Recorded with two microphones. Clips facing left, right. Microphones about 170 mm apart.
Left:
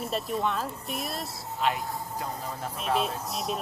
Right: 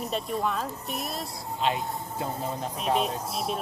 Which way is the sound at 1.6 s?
25° right (ahead or behind).